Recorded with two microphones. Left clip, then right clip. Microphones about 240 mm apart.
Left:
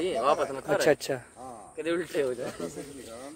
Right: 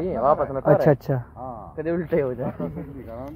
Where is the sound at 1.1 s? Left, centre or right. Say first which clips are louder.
Right 4 dB; centre.